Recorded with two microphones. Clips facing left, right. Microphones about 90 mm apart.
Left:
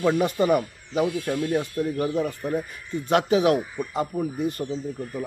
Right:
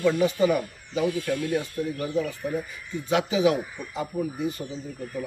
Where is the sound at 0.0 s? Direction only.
45° left (ahead or behind).